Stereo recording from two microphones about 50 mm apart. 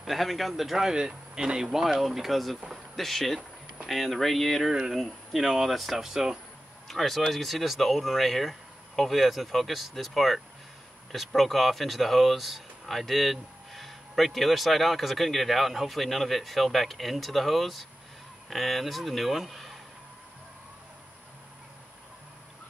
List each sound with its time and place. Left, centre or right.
0.0 s speech: centre
4.6 s speech: centre
6.9 s speech: centre